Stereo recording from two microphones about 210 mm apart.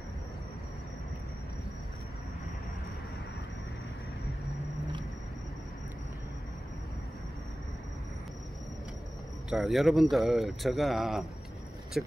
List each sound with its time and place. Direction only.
9.5 s speech: centre (ahead or behind)